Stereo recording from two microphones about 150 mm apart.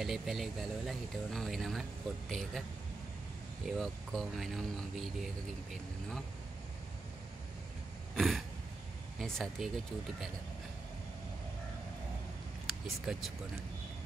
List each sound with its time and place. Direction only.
0.0 s speech: centre (ahead or behind)
3.6 s speech: centre (ahead or behind)
8.2 s throat clearing: centre (ahead or behind)
9.2 s speech: centre (ahead or behind)
12.6 s speech: centre (ahead or behind)